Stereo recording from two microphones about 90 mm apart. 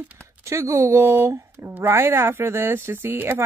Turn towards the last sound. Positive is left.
turn(degrees=-25)  # may be behind; listen again after turning